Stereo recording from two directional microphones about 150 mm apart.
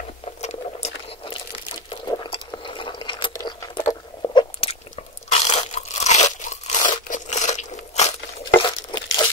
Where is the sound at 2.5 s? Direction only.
35° left (ahead or behind).